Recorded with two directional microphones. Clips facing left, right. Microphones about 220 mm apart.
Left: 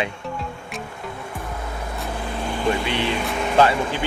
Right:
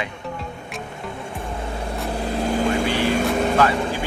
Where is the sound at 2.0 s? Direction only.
35° right (ahead or behind).